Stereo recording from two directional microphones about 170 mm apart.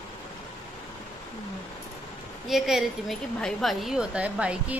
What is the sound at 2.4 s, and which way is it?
A woman's voice, centre (ahead or behind).